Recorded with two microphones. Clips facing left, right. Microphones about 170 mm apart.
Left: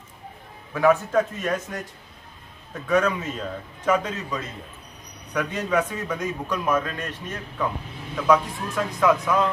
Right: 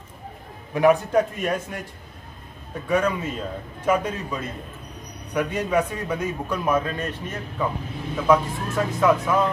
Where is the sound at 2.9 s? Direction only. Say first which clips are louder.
Even; 10° right (ahead or behind).